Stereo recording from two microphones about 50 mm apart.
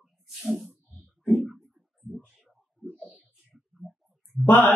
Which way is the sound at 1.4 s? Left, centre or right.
Centre.